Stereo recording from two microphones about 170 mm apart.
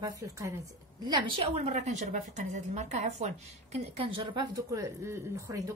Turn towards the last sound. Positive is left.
turn(degrees=-15)  # may be behind; listen again after turning